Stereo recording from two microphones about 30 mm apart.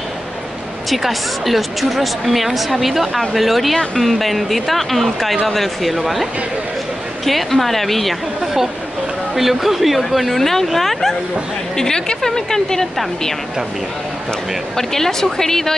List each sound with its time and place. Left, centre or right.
0.8 s speech: centre
7.2 s speech: centre
9.3 s speech: centre
11.7 s speech: left
14.8 s speech: centre